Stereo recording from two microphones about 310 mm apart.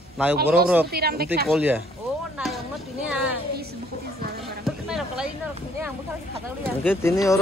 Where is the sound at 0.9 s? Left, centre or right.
Right.